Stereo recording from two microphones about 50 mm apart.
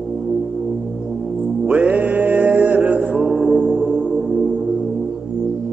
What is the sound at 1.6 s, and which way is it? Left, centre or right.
Music, right.